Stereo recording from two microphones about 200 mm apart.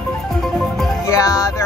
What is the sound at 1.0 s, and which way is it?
Music, 15° left (ahead or behind).